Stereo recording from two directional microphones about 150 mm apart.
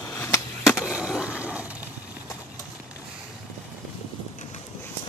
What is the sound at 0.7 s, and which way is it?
Skateboard, 5° right (ahead or behind).